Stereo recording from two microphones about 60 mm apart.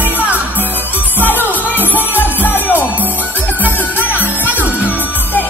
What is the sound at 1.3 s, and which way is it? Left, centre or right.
Music, right.